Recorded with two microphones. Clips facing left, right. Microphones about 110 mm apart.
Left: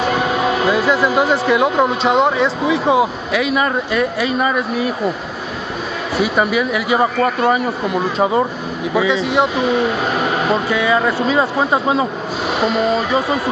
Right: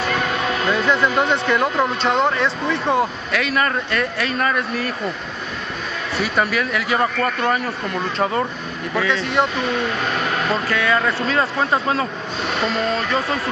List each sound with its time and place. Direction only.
0.0 s vehicle: 25° left (ahead or behind)
0.7 s speech: 5° left (ahead or behind)
6.1 s speech: centre (ahead or behind)
8.9 s speech: centre (ahead or behind)